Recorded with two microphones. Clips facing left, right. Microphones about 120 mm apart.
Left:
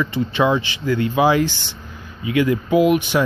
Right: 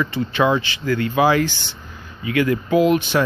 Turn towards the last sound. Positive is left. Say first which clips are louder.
# left 1 dB
turn(degrees=15)  # may be behind; listen again after turning